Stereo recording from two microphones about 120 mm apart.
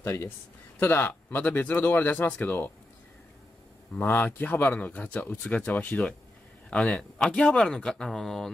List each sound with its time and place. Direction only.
0.0 s a man's voice: 20° left (ahead or behind)
3.9 s speech: 15° left (ahead or behind)